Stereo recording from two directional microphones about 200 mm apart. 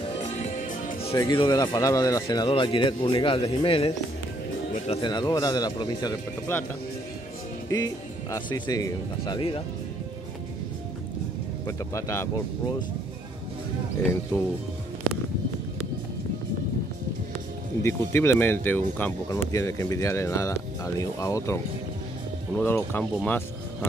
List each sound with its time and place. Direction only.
0.2 s music: 40° left (ahead or behind)
1.1 s speech: 20° left (ahead or behind)
8.3 s speech: 20° left (ahead or behind)
11.6 s speech: 15° left (ahead or behind)
14.0 s speech: 10° left (ahead or behind)
17.8 s speech: 10° left (ahead or behind)
22.6 s speech: 10° left (ahead or behind)
23.2 s music: 10° left (ahead or behind)